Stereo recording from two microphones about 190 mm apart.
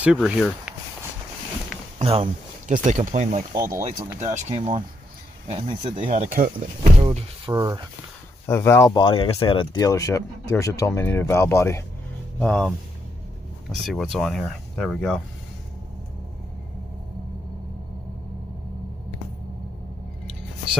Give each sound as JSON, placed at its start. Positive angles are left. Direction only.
{"t": 0.0, "sound": "speech", "side_deg": -5}
{"t": 2.0, "sound": "speech", "side_deg": -30}
{"t": 3.5, "sound": "speech", "side_deg": -15}
{"t": 4.2, "sound": "speech", "side_deg": -40}
{"t": 4.6, "sound": "speech", "side_deg": -25}
{"t": 7.1, "sound": "speech", "side_deg": -25}
{"t": 8.5, "sound": "speech", "side_deg": 15}
{"t": 13.8, "sound": "speech", "side_deg": 0}